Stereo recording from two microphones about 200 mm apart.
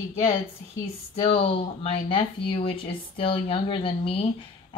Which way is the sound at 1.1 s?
30° left (ahead or behind).